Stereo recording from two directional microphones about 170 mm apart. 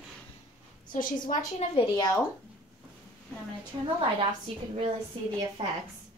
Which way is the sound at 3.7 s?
25° right (ahead or behind).